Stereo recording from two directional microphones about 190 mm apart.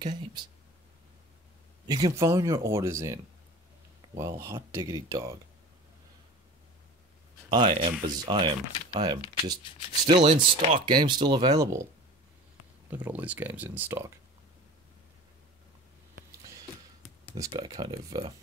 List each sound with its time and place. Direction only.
0.0 s speech: 20° right (ahead or behind)
1.9 s speech: 20° right (ahead or behind)
4.2 s speech: 15° right (ahead or behind)
7.4 s speech: 25° right (ahead or behind)
12.9 s speech: 10° right (ahead or behind)
17.4 s speech: 20° right (ahead or behind)